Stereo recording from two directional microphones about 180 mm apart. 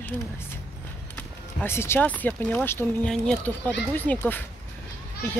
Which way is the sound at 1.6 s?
15° left (ahead or behind).